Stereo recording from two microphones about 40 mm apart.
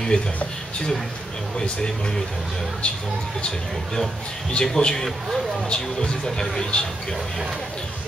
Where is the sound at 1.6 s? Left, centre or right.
Left.